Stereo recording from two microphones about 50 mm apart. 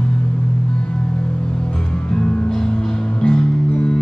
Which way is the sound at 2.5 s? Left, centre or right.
Centre.